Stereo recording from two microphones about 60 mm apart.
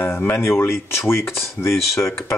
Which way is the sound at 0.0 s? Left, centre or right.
Left.